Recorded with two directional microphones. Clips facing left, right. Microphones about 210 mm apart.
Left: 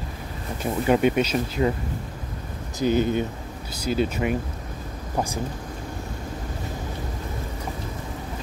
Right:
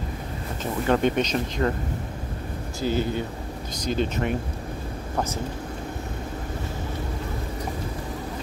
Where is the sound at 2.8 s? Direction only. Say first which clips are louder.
Left 4 dB; 20° left (ahead or behind).